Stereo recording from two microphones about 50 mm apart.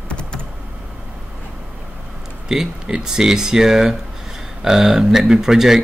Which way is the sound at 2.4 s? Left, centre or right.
Centre.